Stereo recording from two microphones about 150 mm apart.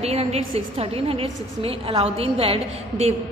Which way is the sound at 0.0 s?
45° right (ahead or behind).